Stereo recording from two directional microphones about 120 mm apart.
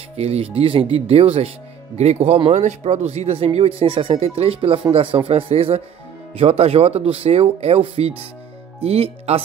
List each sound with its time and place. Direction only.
0.2 s speech: 55° right (ahead or behind)